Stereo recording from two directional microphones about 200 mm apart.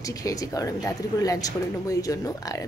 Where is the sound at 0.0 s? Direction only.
15° left (ahead or behind).